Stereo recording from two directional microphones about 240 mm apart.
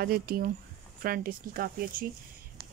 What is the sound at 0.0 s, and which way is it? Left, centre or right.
Speech, right.